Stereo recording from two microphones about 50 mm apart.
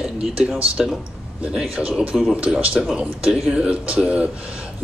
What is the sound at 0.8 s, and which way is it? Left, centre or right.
Speech, centre.